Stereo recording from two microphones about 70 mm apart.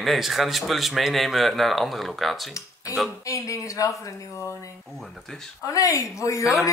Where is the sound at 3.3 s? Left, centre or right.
Left.